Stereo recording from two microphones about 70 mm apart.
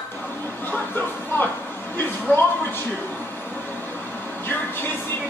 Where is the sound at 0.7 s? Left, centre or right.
Left.